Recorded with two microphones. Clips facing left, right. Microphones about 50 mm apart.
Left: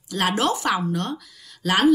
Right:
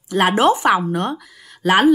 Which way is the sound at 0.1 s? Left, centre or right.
Right.